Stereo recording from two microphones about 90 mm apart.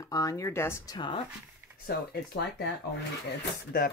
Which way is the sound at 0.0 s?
40° left (ahead or behind).